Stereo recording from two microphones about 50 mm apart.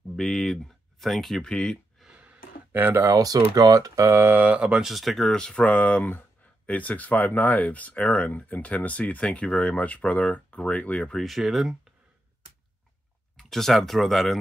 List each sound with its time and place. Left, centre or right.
0.1 s speech: centre
1.4 s speech: centre
2.1 s gasp: right
2.9 s speech: right
4.3 s speech: right
4.6 s speech: centre
4.8 s speech: centre
5.3 s speech: centre
11.1 s speech: centre
13.4 s speech: centre